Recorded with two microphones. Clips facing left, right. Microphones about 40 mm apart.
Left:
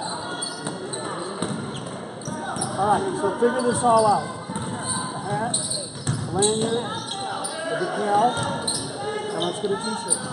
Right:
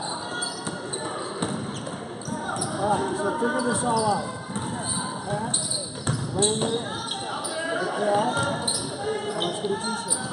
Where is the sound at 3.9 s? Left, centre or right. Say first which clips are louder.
Left 7 dB; left.